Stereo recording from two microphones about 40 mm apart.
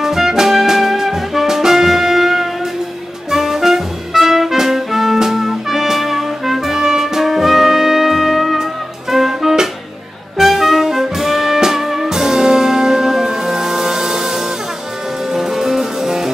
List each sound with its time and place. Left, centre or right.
0.0 s music: centre
15.3 s music: centre